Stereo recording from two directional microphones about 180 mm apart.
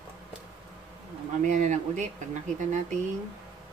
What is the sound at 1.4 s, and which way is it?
Speech, 45° right (ahead or behind).